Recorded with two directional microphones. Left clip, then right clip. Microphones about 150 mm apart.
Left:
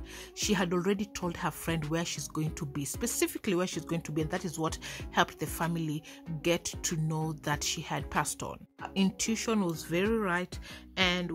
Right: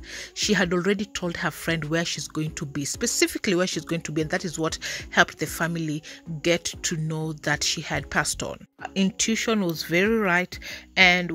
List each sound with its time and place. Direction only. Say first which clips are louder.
0.4 s speech: right 7 dB; 20° right (ahead or behind)